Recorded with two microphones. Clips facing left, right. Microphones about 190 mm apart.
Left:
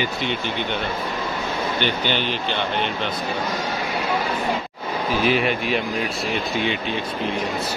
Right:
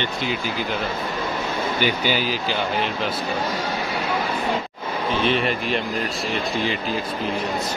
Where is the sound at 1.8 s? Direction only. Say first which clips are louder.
Right 2 dB; 5° right (ahead or behind).